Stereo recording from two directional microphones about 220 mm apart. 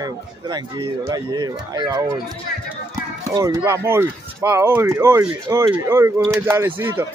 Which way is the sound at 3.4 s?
15° right (ahead or behind).